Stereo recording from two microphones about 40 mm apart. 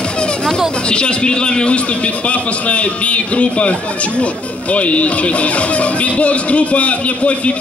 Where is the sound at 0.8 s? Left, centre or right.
Left.